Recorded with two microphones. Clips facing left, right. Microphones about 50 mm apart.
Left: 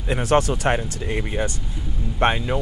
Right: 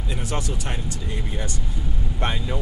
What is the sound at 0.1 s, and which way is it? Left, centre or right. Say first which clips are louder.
Speech: left 11 dB; left.